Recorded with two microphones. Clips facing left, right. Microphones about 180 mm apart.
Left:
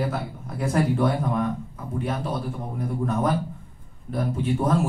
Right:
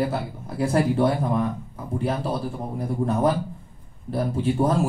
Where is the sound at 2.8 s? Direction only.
30° right (ahead or behind).